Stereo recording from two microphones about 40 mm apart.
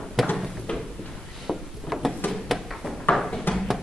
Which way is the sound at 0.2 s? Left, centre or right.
Centre.